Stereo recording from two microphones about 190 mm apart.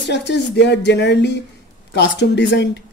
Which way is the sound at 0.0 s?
65° left (ahead or behind).